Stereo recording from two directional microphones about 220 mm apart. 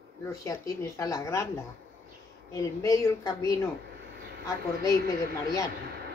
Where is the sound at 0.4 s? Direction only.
15° left (ahead or behind).